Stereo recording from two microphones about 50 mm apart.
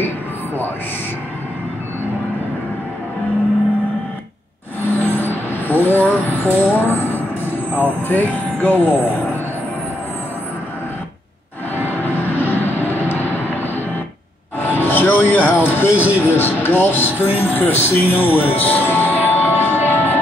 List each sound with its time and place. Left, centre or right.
4.9 s music: left
6.0 s a sound: left
8.1 s speech: left
12.0 s vehicle: left
14.6 s music: left
16.3 s speech: left
19.2 s music: left